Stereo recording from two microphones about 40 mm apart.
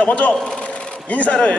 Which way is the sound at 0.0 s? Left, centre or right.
Left.